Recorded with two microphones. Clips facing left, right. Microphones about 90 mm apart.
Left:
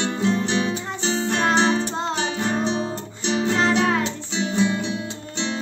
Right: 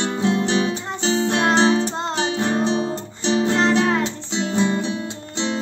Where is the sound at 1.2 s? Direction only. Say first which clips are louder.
Right 2 dB; 5° right (ahead or behind).